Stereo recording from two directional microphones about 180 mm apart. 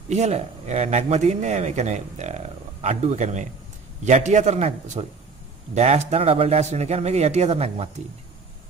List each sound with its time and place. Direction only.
0.1 s speech: 40° right (ahead or behind)